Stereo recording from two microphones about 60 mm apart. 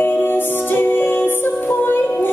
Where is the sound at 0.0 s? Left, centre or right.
Left.